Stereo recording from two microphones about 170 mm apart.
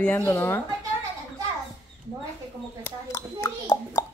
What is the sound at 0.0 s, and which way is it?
Speech, 15° left (ahead or behind).